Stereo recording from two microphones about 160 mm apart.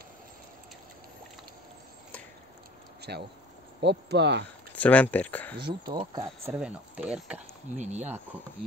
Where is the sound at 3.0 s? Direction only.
90° right.